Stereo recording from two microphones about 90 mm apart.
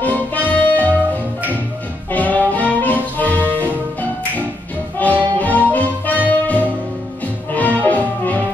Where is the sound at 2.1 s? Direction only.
20° left (ahead or behind).